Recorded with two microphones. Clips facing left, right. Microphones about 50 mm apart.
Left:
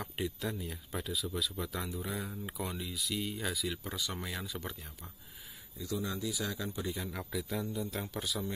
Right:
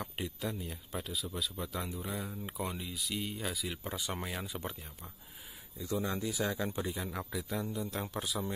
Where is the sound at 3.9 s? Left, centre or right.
Right.